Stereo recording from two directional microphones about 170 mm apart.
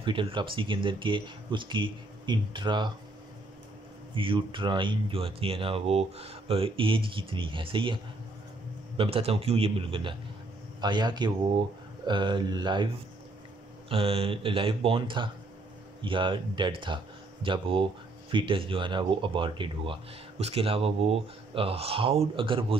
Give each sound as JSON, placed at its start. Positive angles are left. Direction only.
{"t": 0.0, "sound": "speech", "side_deg": -30}
{"t": 4.1, "sound": "speech", "side_deg": -30}